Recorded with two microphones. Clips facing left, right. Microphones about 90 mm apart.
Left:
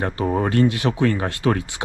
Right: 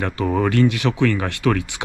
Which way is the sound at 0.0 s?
25° left (ahead or behind).